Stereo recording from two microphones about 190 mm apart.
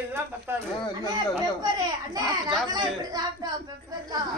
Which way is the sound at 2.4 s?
20° right (ahead or behind).